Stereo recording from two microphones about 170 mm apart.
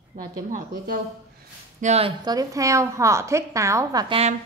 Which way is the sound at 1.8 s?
40° right (ahead or behind).